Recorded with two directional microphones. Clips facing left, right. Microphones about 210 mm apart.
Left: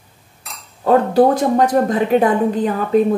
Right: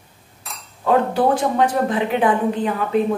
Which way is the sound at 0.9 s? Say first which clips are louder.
Left 4 dB; 40° left (ahead or behind).